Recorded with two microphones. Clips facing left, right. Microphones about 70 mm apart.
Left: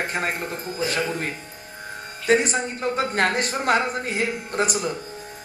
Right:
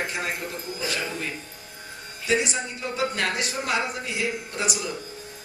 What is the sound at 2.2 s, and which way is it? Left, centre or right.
Speech, left.